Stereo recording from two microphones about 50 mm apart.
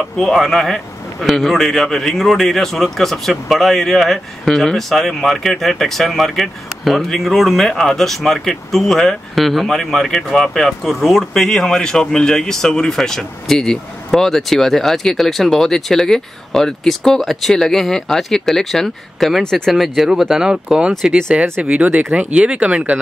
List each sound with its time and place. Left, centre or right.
0.2 s speech: centre
19.7 s speech: centre
21.5 s speech: right